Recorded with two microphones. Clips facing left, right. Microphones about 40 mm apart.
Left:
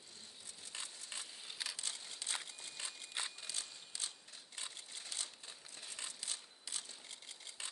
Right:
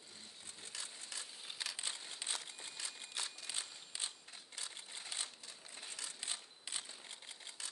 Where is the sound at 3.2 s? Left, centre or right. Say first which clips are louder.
Left 2 dB; left.